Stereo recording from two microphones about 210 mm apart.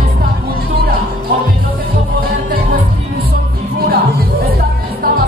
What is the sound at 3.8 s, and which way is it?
Music, 45° right (ahead or behind).